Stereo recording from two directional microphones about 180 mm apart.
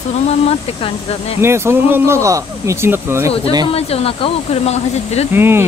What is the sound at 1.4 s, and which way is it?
Speech, 15° right (ahead or behind).